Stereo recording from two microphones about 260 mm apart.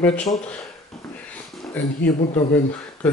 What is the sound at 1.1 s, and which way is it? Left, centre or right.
Sniff, centre.